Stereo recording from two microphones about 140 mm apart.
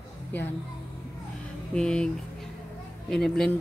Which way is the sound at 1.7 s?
5° left (ahead or behind).